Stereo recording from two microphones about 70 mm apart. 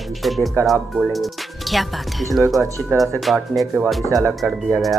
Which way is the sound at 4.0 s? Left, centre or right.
Right.